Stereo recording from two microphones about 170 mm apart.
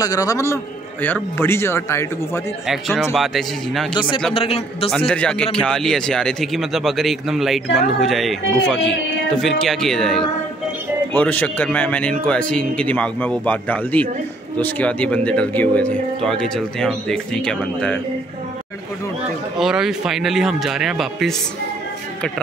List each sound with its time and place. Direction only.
0.0 s a man's voice: 20° left (ahead or behind)
2.6 s speech: centre (ahead or behind)
4.3 s a man's voice: 35° left (ahead or behind)
4.9 s speech: 5° left (ahead or behind)
19.6 s speech: 5° right (ahead or behind)